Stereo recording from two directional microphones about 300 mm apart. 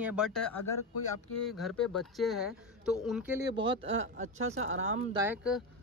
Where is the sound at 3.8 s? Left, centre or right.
Right.